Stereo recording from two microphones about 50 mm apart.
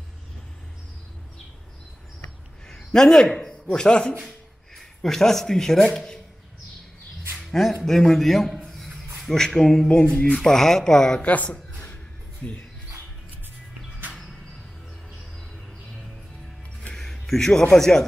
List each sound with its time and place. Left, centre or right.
2.7 s a sound: centre
3.6 s speech: centre
4.7 s a man's voice: centre
7.3 s music: centre
7.8 s a man's voice: centre
8.7 s a sound: centre
9.8 s speech: centre
10.3 s speech: centre
11.2 s a woman's voice: left
16.9 s music: centre
17.5 s speech: centre